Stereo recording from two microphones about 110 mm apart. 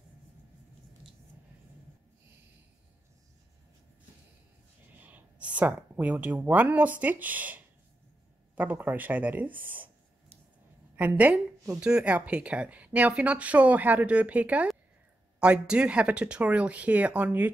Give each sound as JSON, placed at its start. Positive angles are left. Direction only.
{"t": 5.0, "sound": "speech", "side_deg": -15}
{"t": 11.0, "sound": "a woman's voice", "side_deg": -15}